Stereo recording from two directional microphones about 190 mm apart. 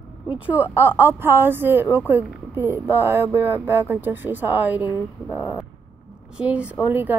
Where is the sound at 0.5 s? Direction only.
10° right (ahead or behind).